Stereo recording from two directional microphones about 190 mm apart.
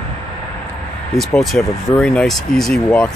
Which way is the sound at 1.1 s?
Centre (ahead or behind).